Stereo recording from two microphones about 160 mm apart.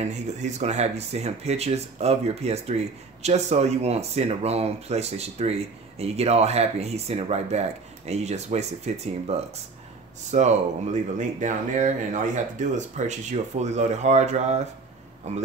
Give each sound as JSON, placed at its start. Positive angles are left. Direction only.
{"t": 0.0, "sound": "speech", "side_deg": -45}